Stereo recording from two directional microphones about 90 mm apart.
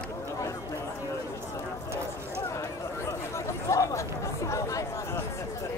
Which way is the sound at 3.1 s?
35° left (ahead or behind).